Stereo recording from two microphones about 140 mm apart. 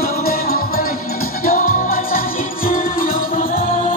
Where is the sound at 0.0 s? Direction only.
90° left.